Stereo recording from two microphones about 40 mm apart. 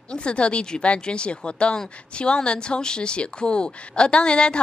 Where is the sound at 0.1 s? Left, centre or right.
Left.